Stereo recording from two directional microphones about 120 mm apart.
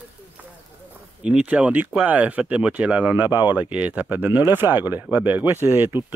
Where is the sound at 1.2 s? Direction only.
10° right (ahead or behind).